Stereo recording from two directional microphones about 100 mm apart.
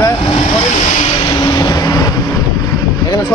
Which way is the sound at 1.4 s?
40° left (ahead or behind).